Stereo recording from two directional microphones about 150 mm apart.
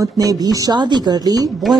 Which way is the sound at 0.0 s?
25° right (ahead or behind).